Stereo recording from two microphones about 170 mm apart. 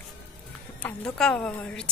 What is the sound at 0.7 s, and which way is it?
A woman's voice, 5° left (ahead or behind).